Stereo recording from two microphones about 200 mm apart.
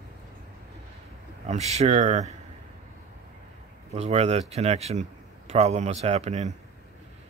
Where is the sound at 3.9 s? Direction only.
30° right (ahead or behind).